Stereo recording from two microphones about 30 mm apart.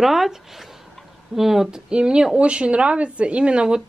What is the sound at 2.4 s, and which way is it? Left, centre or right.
Speech, right.